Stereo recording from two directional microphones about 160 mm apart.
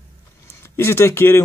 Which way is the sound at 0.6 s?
15° left (ahead or behind).